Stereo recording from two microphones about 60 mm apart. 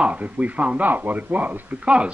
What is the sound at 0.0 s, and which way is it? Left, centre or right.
A man's voice, right.